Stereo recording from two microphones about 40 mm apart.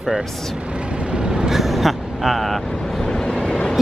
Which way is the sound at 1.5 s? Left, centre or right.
Centre.